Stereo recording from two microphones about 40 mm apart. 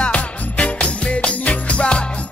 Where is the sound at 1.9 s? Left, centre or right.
Left.